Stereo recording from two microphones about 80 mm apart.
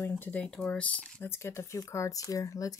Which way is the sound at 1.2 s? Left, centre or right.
Left.